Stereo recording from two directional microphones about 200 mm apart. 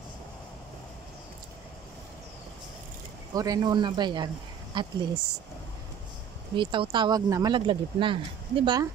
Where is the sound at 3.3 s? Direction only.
20° right (ahead or behind).